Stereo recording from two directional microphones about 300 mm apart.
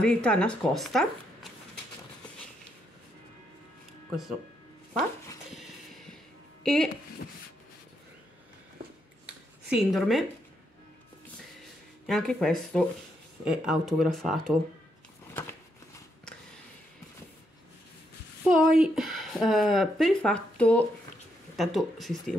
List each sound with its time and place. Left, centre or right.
0.0 s speech: centre
4.9 s dog: centre
6.6 s speech: centre
9.2 s a sound: centre
12.1 s speech: centre
18.5 s speech: centre